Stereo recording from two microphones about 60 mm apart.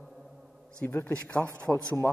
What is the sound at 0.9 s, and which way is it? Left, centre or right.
Speech, left.